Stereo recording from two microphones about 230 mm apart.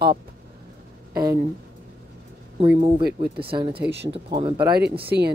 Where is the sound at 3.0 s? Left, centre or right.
Right.